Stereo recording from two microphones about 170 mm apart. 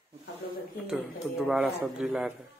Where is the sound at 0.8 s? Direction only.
5° right (ahead or behind).